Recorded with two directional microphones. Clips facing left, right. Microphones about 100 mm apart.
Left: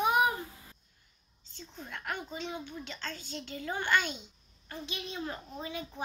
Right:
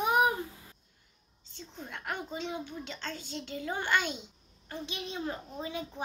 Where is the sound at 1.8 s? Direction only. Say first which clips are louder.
Right 1 dB; 15° right (ahead or behind).